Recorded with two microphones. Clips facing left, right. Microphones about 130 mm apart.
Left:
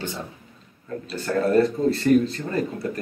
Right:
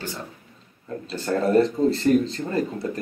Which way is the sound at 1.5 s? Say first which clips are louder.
Right 1 dB; 25° right (ahead or behind).